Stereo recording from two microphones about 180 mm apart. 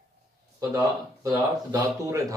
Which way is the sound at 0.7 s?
20° right (ahead or behind).